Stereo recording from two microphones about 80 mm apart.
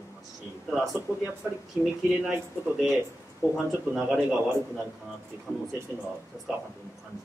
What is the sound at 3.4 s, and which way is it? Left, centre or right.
Speech, right.